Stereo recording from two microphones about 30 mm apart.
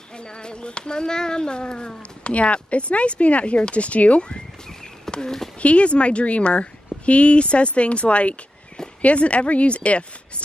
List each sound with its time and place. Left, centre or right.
0.2 s speech: left
2.2 s speech: left
5.1 s a sound: centre
5.6 s speech: left